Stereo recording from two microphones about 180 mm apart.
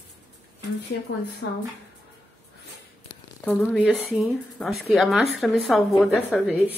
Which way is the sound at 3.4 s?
10° left (ahead or behind).